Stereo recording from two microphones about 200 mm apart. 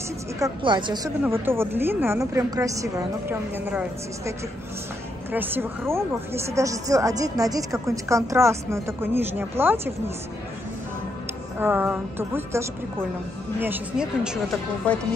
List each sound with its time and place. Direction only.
0.4 s a woman's voice: 25° right (ahead or behind)
1.2 s speech: 10° right (ahead or behind)
5.3 s speech: 10° right (ahead or behind)
11.6 s speech: 10° right (ahead or behind)